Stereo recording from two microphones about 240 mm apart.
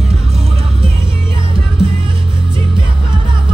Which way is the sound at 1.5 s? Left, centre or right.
Right.